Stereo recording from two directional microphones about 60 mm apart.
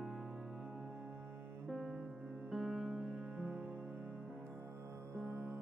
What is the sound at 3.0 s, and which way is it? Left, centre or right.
Music, right.